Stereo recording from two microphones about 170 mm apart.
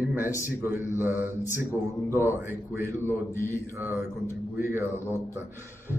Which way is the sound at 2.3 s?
15° right (ahead or behind).